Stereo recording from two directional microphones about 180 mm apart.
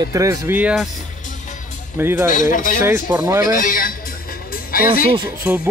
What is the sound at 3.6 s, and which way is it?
Speech, 50° left (ahead or behind).